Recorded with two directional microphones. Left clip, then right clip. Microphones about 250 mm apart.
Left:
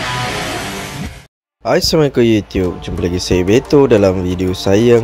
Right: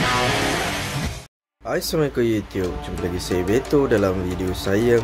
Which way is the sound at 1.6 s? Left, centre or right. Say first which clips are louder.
Left 10 dB; left.